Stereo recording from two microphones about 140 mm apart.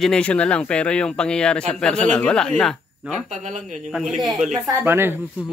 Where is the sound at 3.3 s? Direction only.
60° right (ahead or behind).